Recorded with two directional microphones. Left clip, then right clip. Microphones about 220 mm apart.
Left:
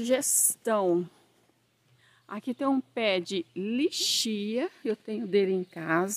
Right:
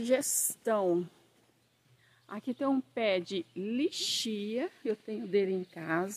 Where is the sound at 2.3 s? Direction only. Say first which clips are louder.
Left 3 dB; 25° left (ahead or behind); by 6.2 s 45° left (ahead or behind).